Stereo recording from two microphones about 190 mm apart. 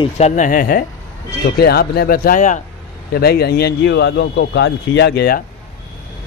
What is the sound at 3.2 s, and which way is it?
Speech, 55° left (ahead or behind).